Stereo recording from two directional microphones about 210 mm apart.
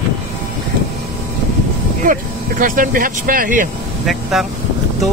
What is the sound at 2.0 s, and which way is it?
Speech, 40° right (ahead or behind).